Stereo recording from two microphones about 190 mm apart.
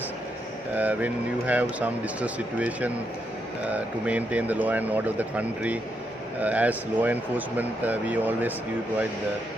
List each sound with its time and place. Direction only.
0.7 s speech: 10° right (ahead or behind)